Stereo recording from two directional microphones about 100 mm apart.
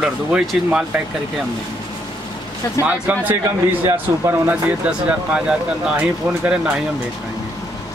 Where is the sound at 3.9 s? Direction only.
25° right (ahead or behind).